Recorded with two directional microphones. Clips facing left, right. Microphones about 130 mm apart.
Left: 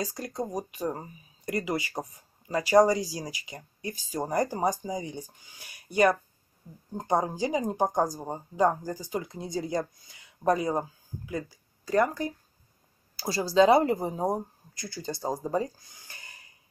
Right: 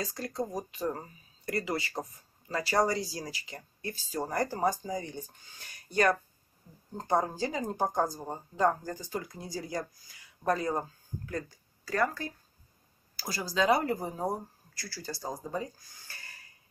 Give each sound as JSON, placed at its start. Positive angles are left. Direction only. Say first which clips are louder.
{"t": 0.0, "sound": "speech", "louder": "left 2 dB", "side_deg": 15}
{"t": 11.8, "sound": "speech", "louder": "left 5 dB", "side_deg": 20}
{"t": 15.8, "sound": "a sound", "louder": "left 1 dB", "side_deg": 20}